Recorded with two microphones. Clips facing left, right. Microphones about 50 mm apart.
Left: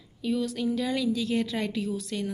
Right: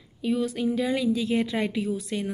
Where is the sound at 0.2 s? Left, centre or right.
Right.